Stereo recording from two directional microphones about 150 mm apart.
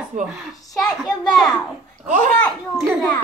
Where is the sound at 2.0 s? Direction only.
55° right (ahead or behind).